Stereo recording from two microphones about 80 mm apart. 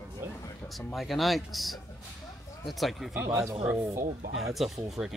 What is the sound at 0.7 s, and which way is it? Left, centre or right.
Speech, centre.